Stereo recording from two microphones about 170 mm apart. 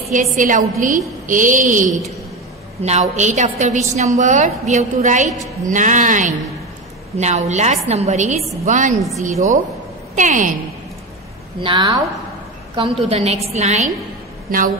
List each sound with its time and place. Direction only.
0.1 s a woman's voice: 45° right (ahead or behind)
10.1 s a woman's voice: 50° right (ahead or behind)
11.6 s a woman's voice: 30° right (ahead or behind)